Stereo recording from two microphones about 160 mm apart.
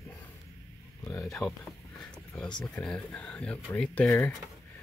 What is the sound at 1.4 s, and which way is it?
Speech, 15° left (ahead or behind).